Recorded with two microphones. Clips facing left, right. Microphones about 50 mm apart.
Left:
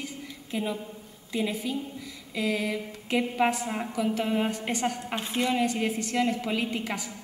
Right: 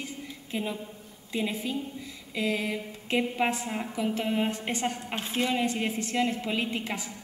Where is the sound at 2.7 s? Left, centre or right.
Centre.